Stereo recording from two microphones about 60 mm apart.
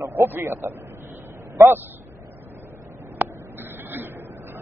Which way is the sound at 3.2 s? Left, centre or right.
Right.